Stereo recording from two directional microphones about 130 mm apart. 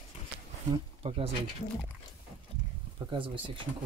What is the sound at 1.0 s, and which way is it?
Speech, 50° right (ahead or behind).